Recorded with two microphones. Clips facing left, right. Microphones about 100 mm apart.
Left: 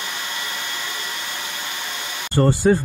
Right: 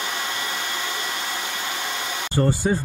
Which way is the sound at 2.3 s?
90° left.